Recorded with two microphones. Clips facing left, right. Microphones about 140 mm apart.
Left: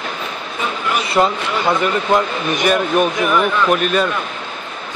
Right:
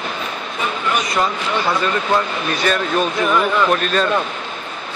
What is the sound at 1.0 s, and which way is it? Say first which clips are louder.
Speech: left 4 dB; 25° left (ahead or behind).